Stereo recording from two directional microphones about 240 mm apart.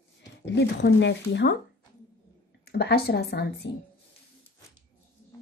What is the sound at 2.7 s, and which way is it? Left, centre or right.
Speech, left.